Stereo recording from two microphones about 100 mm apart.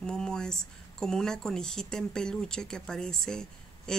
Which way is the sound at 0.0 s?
5° left (ahead or behind).